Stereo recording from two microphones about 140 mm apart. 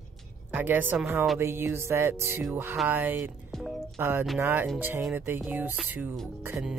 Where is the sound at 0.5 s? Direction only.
15° right (ahead or behind).